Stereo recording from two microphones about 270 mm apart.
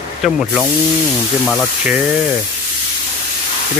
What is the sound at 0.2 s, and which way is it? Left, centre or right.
Speech, centre.